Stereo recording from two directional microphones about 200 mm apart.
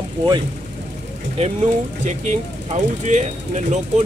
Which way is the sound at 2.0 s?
35° right (ahead or behind).